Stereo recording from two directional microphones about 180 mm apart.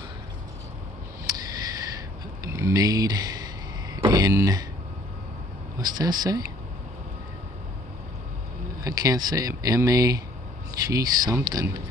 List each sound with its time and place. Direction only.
1.8 s a sound: 20° right (ahead or behind)
5.8 s speech: 20° right (ahead or behind)
8.8 s speech: 20° right (ahead or behind)